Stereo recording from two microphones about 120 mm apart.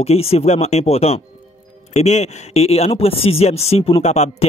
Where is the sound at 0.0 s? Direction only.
55° left (ahead or behind).